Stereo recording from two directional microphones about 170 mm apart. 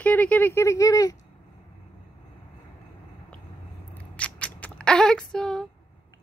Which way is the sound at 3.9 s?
10° left (ahead or behind).